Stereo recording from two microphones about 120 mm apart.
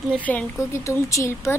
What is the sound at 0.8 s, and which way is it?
Speech, 25° left (ahead or behind).